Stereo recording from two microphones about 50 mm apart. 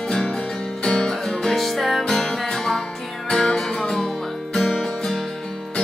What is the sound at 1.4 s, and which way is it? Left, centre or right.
Music, centre.